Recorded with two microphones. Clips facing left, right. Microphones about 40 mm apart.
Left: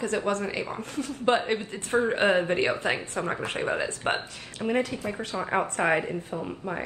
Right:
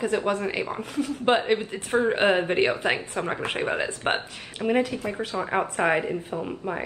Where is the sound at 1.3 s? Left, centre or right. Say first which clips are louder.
Right 2 dB; right.